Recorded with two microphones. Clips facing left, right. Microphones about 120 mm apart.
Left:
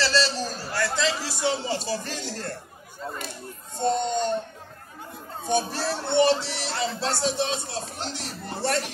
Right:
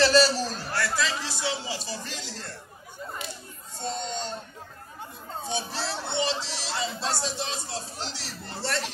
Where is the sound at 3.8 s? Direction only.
50° left (ahead or behind).